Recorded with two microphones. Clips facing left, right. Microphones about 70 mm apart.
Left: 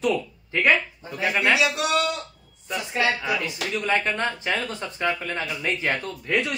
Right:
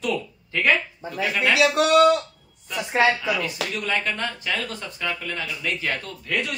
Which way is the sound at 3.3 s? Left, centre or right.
Left.